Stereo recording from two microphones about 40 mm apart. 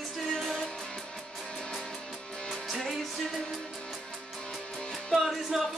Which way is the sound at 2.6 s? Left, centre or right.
Centre.